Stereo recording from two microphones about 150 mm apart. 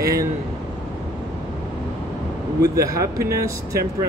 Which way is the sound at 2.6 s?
25° right (ahead or behind).